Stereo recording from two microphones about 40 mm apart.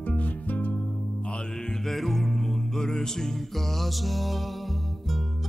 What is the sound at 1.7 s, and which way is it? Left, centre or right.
Music, centre.